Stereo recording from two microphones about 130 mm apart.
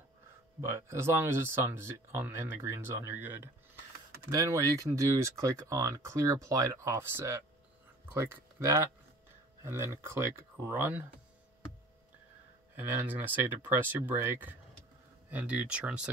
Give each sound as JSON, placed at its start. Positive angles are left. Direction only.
{"t": 0.6, "sound": "speech", "side_deg": -20}
{"t": 12.7, "sound": "speech", "side_deg": -15}